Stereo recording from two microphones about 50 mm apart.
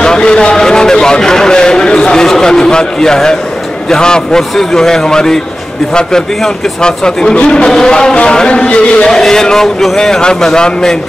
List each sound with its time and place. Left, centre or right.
0.0 s a man's voice: centre